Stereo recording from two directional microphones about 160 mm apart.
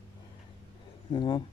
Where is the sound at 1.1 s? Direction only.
30° left (ahead or behind).